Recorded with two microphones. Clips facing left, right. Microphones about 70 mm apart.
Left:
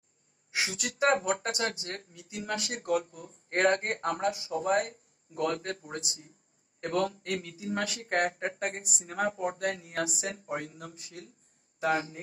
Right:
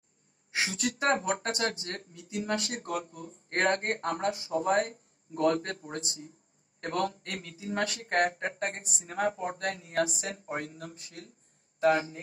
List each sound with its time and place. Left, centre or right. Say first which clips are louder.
0.6 s a woman's voice: even; right